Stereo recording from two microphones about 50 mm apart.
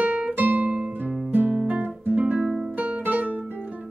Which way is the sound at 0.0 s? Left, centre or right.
Right.